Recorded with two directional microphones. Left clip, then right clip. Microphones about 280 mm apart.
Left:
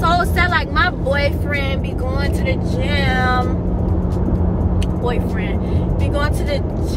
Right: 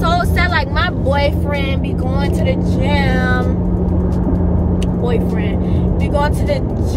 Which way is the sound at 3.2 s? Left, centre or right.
Left.